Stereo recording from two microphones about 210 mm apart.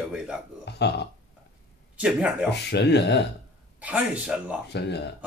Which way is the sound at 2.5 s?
55° left (ahead or behind).